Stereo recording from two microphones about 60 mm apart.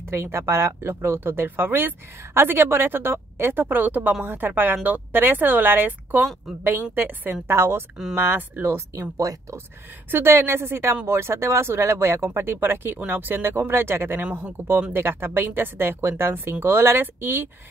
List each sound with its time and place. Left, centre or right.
0.1 s speech: right
7.4 s speech: right
8.2 s speech: right
9.1 s speech: right
10.1 s speech: right
14.3 s speech: right